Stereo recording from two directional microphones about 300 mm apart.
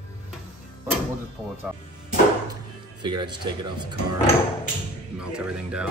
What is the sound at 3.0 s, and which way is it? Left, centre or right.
Speech, centre.